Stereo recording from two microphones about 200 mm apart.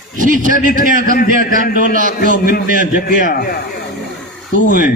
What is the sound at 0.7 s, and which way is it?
A man's voice, 45° left (ahead or behind).